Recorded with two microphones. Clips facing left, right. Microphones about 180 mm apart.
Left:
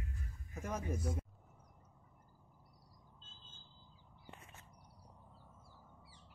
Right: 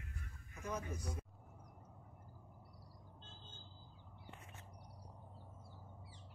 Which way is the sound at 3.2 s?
65° right (ahead or behind).